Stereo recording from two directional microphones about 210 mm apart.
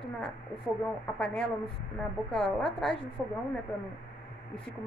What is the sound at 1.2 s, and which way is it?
A woman's voice, 5° left (ahead or behind).